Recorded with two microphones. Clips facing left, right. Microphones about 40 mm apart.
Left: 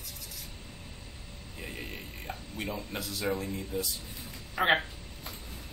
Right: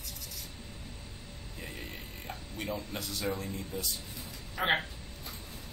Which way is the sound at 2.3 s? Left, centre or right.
Centre.